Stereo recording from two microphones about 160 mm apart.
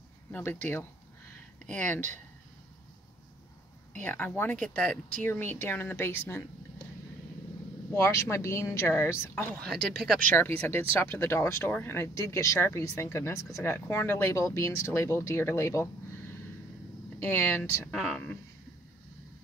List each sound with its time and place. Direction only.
0.3 s speech: 15° left (ahead or behind)
4.0 s speech: 10° left (ahead or behind)
7.9 s speech: 15° left (ahead or behind)
10.9 s speech: 15° left (ahead or behind)
17.2 s speech: 15° left (ahead or behind)
17.9 s speech: centre (ahead or behind)